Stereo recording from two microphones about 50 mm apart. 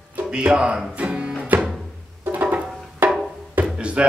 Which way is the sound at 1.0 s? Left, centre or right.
Right.